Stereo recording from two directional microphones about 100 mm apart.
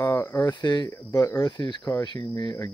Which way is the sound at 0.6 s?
45° left (ahead or behind).